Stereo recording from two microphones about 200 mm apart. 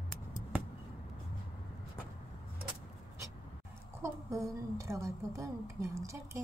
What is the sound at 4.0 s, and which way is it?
A woman's voice, 15° right (ahead or behind).